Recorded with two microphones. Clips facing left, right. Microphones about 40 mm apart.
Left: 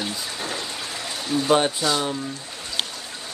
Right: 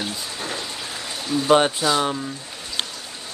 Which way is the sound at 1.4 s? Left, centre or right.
Centre.